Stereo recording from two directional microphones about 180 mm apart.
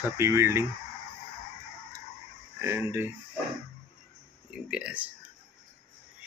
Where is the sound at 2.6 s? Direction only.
15° right (ahead or behind).